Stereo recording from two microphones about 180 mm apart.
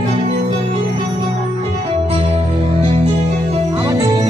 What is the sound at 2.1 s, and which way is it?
Music, 35° right (ahead or behind).